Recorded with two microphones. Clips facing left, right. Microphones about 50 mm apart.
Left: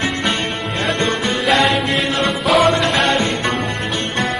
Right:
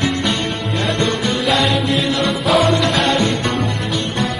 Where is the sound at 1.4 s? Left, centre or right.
Left.